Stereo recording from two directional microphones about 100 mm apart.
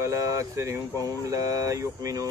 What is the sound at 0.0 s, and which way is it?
Speech, 30° right (ahead or behind).